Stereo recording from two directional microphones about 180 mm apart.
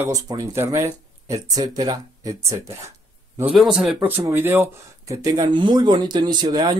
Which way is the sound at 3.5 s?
Centre (ahead or behind).